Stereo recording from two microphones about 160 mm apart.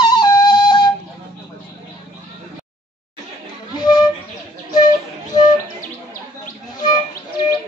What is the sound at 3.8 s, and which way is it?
Music, 25° left (ahead or behind).